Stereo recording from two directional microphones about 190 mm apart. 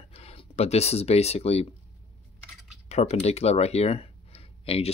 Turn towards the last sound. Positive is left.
turn(degrees=30)  # may be behind; listen again after turning